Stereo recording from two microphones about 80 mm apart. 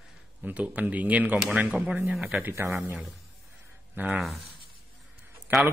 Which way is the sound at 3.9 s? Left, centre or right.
Right.